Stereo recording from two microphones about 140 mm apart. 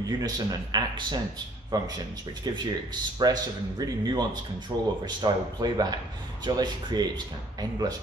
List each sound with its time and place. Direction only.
0.2 s speech: 30° right (ahead or behind)